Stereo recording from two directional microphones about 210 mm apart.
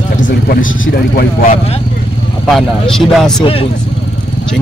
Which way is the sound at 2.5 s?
Centre (ahead or behind).